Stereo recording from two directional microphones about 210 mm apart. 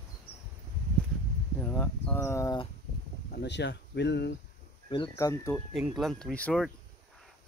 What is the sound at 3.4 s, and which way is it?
Speech, 55° left (ahead or behind).